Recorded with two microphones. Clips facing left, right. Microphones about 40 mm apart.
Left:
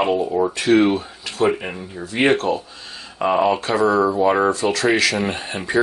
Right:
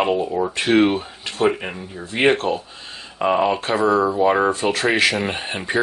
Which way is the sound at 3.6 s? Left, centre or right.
Right.